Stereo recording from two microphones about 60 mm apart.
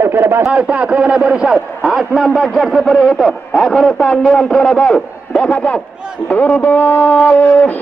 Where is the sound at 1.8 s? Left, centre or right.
Centre; by 7.8 s left.